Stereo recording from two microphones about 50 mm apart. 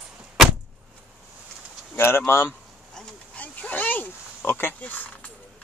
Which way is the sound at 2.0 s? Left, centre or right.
Left.